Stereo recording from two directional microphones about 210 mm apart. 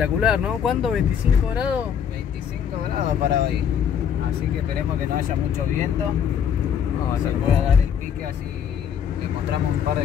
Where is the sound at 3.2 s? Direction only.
50° right (ahead or behind).